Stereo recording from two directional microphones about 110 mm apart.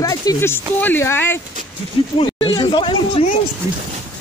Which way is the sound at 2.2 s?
50° left (ahead or behind).